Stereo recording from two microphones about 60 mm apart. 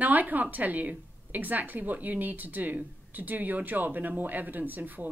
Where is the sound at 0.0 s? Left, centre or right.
Right.